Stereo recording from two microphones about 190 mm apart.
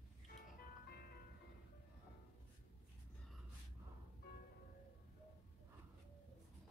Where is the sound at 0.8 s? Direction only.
55° left (ahead or behind).